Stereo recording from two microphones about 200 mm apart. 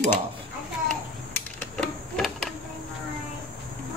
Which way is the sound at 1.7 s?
5° left (ahead or behind).